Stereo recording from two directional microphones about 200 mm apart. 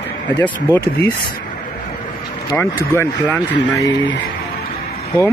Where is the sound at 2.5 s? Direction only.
10° left (ahead or behind).